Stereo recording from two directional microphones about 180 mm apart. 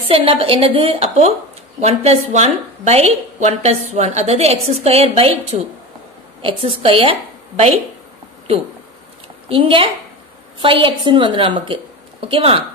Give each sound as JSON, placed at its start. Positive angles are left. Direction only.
{"t": 0.1, "sound": "a woman's voice", "side_deg": -30}
{"t": 9.5, "sound": "a woman's voice", "side_deg": -30}